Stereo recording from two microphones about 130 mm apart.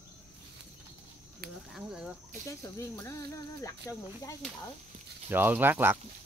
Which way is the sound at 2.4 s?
20° left (ahead or behind).